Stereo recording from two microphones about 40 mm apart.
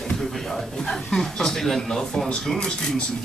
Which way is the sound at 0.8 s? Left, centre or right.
Centre.